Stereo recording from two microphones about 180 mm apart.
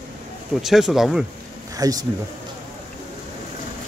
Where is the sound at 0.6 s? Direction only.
Centre (ahead or behind).